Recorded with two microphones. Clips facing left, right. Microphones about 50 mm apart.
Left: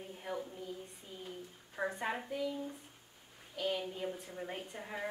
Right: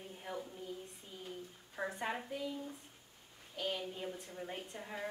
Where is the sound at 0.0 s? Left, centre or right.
Centre.